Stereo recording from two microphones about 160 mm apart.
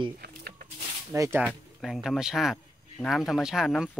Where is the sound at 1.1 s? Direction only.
15° right (ahead or behind).